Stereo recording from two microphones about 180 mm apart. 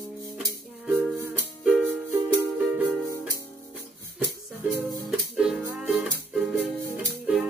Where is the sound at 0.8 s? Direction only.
5° right (ahead or behind).